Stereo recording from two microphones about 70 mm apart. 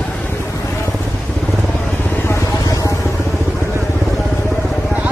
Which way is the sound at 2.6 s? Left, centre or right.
Left.